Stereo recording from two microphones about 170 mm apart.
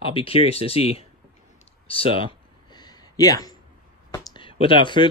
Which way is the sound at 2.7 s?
25° left (ahead or behind).